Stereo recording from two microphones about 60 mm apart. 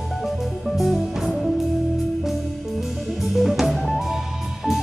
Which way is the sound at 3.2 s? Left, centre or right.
Centre.